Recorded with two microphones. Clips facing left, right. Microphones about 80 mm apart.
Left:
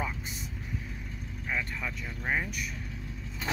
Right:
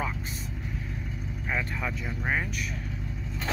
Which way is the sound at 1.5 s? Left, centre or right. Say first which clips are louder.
Right 3 dB; centre.